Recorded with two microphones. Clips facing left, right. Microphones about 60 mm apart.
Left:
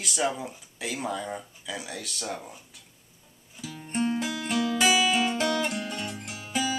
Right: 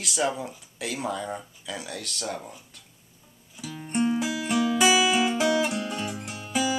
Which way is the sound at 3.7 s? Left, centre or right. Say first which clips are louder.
Right 3 dB; centre.